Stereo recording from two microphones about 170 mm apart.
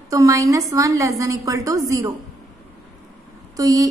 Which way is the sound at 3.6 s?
20° right (ahead or behind).